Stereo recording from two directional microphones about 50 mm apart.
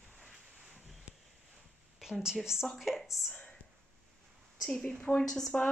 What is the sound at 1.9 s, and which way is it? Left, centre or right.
Speech, centre.